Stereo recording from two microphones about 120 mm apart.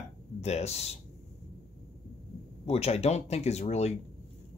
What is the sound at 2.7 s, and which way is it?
Speech, 60° left (ahead or behind).